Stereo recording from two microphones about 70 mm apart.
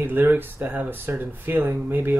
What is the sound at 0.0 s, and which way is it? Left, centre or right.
Speech, right.